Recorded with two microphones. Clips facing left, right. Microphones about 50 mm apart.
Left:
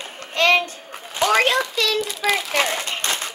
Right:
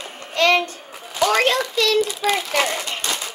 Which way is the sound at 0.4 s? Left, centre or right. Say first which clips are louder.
Even; centre.